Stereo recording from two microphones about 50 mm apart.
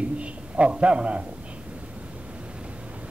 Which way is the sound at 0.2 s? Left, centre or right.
Right.